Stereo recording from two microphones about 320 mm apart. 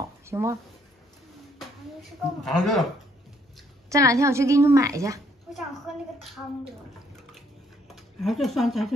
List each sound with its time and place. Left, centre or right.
0.2 s speech: centre
2.4 s speech: centre
3.9 s a woman's voice: centre
7.2 s drip: centre
7.9 s speech: centre